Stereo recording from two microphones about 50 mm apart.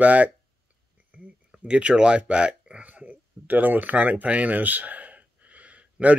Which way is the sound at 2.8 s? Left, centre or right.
Right.